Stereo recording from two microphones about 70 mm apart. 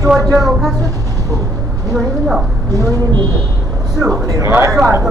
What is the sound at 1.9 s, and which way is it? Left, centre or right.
Speech, centre.